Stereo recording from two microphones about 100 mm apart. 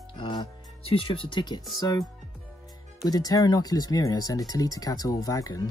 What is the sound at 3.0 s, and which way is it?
Speech, 40° left (ahead or behind).